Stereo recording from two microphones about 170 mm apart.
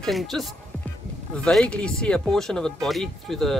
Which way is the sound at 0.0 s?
Centre (ahead or behind).